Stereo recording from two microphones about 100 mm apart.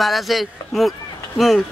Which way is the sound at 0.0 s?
Centre (ahead or behind).